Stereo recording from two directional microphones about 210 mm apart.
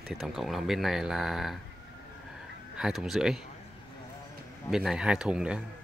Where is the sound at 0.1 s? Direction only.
Centre (ahead or behind).